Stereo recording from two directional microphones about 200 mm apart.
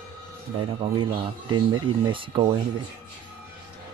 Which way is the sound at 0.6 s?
25° right (ahead or behind).